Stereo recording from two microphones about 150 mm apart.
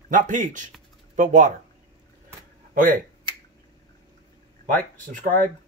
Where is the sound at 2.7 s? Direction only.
60° right (ahead or behind).